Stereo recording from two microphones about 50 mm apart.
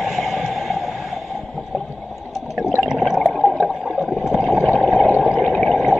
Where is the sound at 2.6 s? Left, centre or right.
Centre.